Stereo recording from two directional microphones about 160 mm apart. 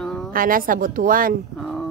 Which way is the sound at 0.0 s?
5° left (ahead or behind).